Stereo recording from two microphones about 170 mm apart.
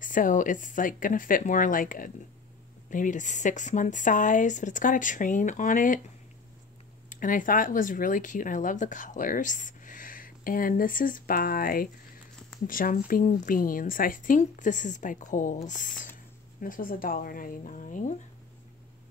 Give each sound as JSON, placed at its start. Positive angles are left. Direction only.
{"t": 0.0, "sound": "speech", "side_deg": 50}